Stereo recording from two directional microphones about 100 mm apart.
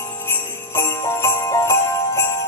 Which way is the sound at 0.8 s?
30° left (ahead or behind).